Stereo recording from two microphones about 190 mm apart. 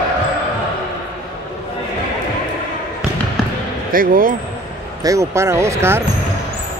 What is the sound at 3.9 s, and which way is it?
Speech, 50° right (ahead or behind).